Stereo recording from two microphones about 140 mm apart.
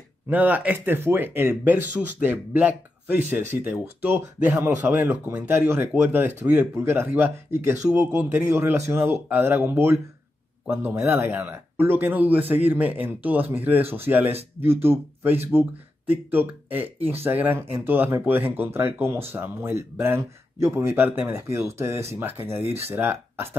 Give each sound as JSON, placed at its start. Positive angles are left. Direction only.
{"t": 0.3, "sound": "speech", "side_deg": -10}